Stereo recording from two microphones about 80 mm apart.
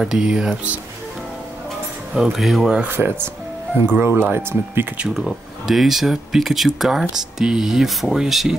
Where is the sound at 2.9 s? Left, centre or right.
Right.